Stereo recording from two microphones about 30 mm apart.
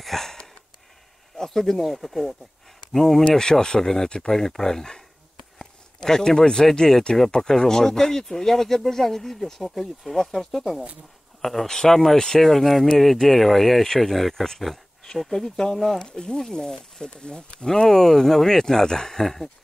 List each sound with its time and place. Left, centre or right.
0.0 s wheeze: centre
1.3 s speech: centre
3.3 s speech: left; by 10.2 s centre
11.4 s speech: centre; by 17.6 s left
17.6 s speech: centre
19.1 s speech: centre